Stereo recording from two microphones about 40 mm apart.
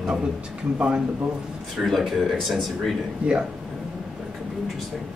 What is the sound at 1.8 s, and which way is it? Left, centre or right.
Speech, centre.